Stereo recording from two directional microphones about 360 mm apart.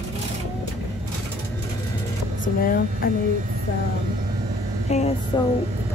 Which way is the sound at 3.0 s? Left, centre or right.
Left.